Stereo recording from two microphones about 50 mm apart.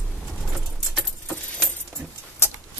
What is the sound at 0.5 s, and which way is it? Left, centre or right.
Keys jangling, centre.